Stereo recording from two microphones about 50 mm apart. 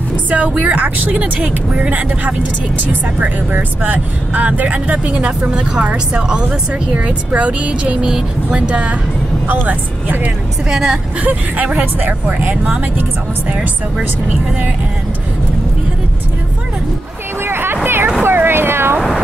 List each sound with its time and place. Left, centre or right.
0.3 s a woman's voice: right
10.7 s a woman's voice: centre
11.1 s a woman's voice: right
17.4 s vehicle: right
18.2 s a sound: right